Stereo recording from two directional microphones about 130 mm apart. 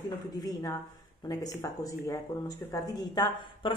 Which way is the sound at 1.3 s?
25° left (ahead or behind).